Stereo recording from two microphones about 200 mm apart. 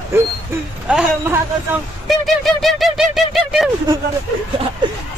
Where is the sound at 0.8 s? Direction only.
5° right (ahead or behind).